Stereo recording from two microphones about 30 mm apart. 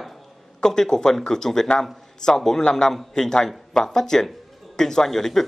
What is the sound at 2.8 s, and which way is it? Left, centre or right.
Speech, left.